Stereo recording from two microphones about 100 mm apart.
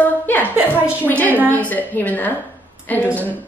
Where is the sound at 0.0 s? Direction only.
15° left (ahead or behind).